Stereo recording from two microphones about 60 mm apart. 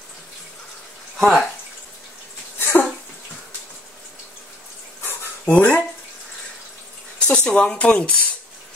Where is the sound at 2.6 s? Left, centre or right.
Left.